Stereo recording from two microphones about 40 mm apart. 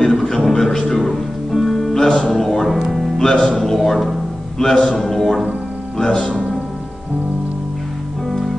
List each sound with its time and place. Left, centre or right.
0.0 s music: centre
0.9 s music: centre
2.0 s music: centre
2.3 s speech: centre
2.8 s music: centre
3.2 s music: centre
3.4 s a man's voice: centre
4.6 s a man's voice: centre
6.3 s music: centre